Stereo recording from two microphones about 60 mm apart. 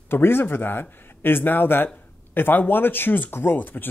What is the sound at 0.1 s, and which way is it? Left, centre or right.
Speech, left.